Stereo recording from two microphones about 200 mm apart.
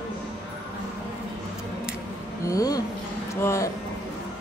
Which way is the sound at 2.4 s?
15° left (ahead or behind).